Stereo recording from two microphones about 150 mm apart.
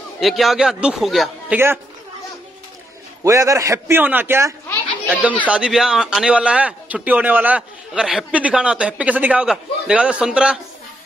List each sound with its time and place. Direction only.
0.2 s a man's voice: centre (ahead or behind)
3.3 s a man's voice: 20° right (ahead or behind)
4.6 s children playing: 10° left (ahead or behind)
5.5 s speech: 5° right (ahead or behind)